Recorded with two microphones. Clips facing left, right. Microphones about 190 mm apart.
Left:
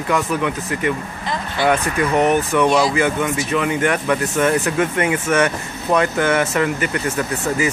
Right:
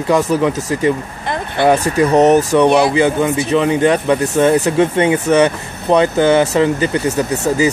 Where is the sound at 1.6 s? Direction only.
55° right (ahead or behind).